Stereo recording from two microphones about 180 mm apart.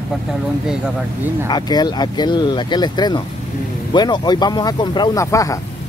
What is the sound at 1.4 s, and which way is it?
Speech, 20° left (ahead or behind).